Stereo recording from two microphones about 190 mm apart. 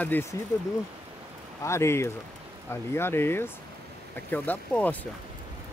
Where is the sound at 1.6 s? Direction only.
15° left (ahead or behind).